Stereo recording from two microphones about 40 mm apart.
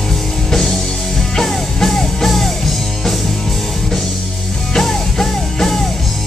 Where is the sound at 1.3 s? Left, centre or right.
Centre.